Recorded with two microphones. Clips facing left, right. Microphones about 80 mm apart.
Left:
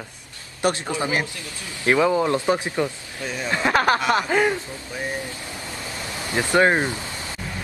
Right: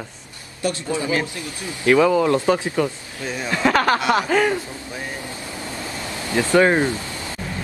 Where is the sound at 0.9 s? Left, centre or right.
Left.